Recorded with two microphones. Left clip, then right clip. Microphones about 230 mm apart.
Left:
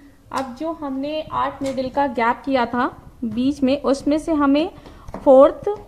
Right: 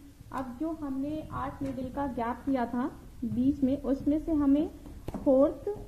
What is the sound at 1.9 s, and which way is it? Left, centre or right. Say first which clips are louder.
A woman's voice: left 15 dB; left.